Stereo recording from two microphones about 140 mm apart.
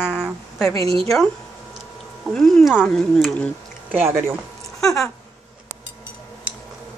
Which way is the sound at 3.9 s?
15° right (ahead or behind).